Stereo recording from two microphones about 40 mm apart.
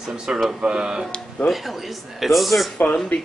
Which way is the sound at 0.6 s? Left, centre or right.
Centre.